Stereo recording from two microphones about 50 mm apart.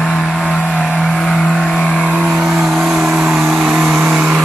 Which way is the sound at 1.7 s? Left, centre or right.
Left.